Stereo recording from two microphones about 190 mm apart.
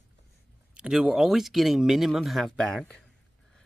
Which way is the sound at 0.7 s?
5° right (ahead or behind).